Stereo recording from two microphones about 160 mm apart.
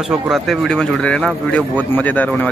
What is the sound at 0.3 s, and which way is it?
Speech, centre (ahead or behind).